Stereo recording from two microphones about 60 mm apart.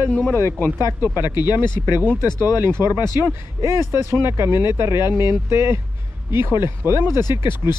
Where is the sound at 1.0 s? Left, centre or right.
Right.